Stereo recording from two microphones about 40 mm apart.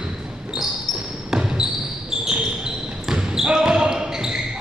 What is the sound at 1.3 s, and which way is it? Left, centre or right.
Basketball bounce, centre.